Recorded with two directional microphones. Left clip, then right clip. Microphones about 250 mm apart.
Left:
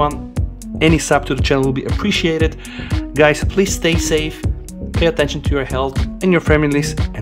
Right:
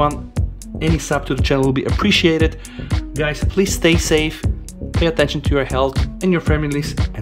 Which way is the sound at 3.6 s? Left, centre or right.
Centre.